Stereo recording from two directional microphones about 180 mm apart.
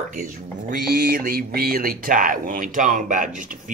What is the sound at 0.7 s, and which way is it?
Speech, 60° right (ahead or behind).